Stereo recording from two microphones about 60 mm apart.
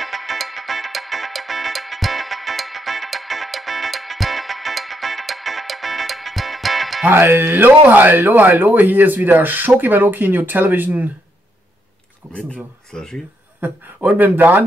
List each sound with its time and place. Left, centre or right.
0.0 s music: centre
7.1 s speech: right
12.3 s speech: left
13.6 s speech: right